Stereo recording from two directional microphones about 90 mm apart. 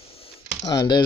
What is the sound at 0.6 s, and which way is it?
Speech, 50° left (ahead or behind).